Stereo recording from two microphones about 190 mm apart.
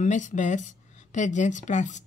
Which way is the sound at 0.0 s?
40° left (ahead or behind).